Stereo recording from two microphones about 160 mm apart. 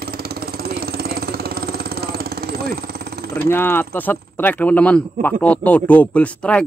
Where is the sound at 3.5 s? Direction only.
10° left (ahead or behind).